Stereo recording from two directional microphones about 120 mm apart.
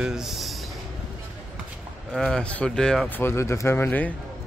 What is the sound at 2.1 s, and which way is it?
Speech, 5° left (ahead or behind).